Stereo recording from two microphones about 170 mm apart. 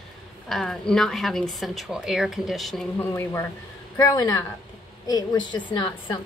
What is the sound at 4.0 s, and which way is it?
A woman's voice, 25° left (ahead or behind).